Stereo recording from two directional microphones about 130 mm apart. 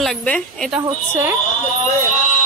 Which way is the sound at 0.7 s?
15° right (ahead or behind).